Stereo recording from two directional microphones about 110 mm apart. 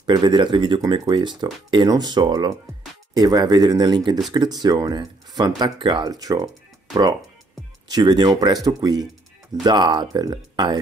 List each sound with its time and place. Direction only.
0.0 s speech: 45° right (ahead or behind)